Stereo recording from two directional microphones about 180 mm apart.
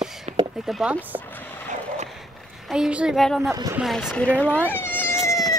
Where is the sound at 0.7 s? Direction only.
5° right (ahead or behind).